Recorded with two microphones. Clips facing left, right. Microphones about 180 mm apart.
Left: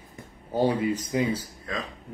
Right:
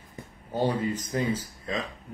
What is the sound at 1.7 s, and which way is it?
Speech, 20° right (ahead or behind).